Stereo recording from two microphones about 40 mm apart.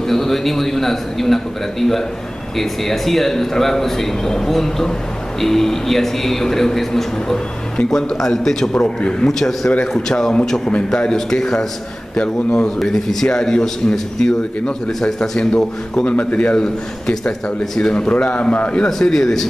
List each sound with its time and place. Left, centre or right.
0.1 s a man's voice: centre
8.5 s a man's voice: centre
8.8 s a man's voice: left
9.3 s a man's voice: centre
16.1 s a man's voice: left
17.9 s a man's voice: left
18.9 s a man's voice: centre